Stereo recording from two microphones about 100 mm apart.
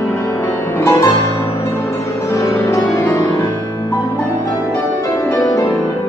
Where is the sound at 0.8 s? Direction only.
25° left (ahead or behind).